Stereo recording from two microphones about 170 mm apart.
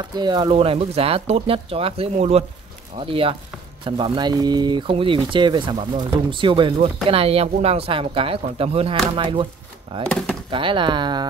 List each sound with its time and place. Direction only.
0.1 s speech: 25° right (ahead or behind)
10.0 s speech: 5° left (ahead or behind)
10.5 s speech: 30° right (ahead or behind)